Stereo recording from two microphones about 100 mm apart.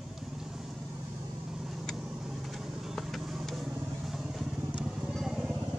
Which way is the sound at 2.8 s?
Centre (ahead or behind).